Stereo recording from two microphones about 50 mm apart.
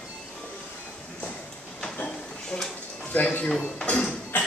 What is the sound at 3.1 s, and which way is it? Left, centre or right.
Speech, left.